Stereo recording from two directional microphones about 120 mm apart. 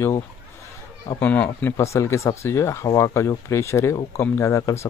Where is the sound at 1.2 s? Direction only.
15° left (ahead or behind).